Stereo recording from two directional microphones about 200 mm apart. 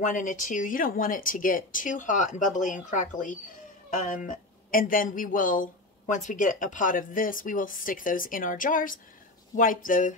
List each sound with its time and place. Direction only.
0.0 s speech: 40° left (ahead or behind)